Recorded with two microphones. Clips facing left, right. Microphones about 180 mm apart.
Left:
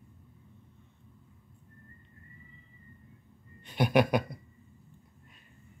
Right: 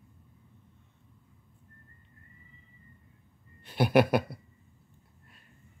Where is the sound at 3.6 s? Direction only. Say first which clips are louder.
Right 2 dB; 5° right (ahead or behind).